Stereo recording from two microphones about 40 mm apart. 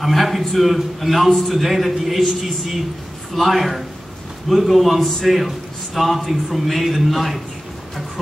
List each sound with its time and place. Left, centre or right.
0.0 s a man's voice: centre
3.3 s a man's voice: centre